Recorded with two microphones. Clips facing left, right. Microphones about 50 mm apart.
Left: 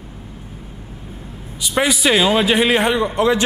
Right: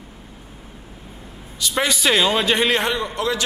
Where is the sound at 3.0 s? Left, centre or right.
Left.